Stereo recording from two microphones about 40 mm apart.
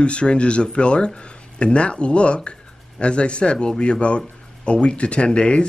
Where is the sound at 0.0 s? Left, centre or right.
Left.